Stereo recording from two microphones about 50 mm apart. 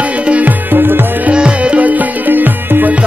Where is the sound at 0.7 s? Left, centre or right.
Right.